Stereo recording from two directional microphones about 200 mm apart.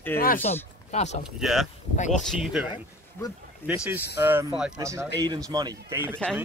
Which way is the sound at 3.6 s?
10° left (ahead or behind).